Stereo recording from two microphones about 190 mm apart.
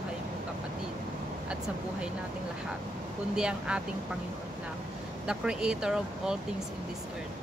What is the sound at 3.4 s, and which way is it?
Speech, 5° right (ahead or behind).